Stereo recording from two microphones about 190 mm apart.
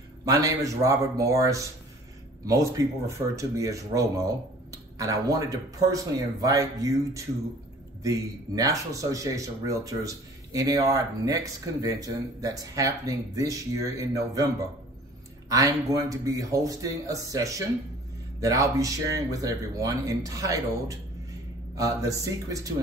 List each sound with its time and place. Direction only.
0.2 s speech: 15° right (ahead or behind)
21.7 s speech: 15° right (ahead or behind)